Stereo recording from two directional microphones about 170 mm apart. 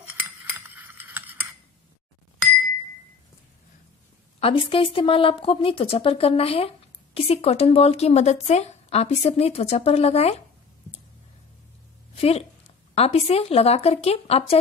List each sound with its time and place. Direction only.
0.0 s cutlery: 10° right (ahead or behind)
4.4 s a woman's voice: 35° left (ahead or behind)
12.2 s a woman's voice: 35° left (ahead or behind)